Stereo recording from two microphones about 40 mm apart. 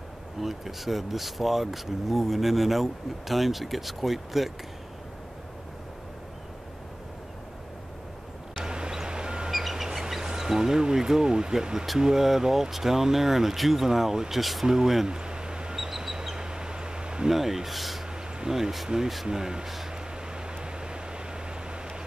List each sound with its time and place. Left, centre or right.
0.4 s speech: centre
8.5 s vehicle: right
9.5 s bird: centre
9.8 s speech: centre
15.0 s bird: right
17.3 s speech: centre
20.3 s a sound: right